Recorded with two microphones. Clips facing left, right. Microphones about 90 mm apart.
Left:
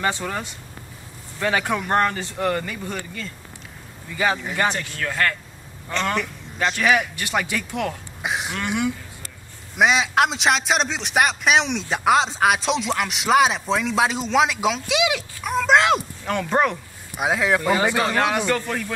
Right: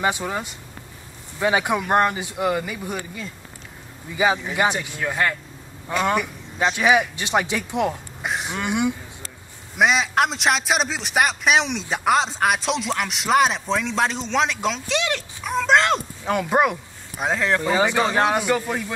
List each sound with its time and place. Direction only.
0.0 s speech: 10° right (ahead or behind)
8.2 s a sound: centre (ahead or behind)
8.5 s speech: 15° right (ahead or behind)
9.8 s a man's voice: centre (ahead or behind)
16.3 s speech: 10° right (ahead or behind)
17.2 s speech: 5° left (ahead or behind)
18.0 s speech: 20° right (ahead or behind)